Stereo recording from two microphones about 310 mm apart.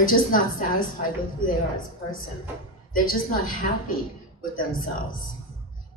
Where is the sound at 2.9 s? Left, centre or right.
Left.